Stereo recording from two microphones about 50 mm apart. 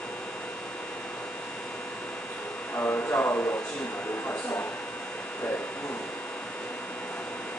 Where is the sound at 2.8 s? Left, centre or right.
Left.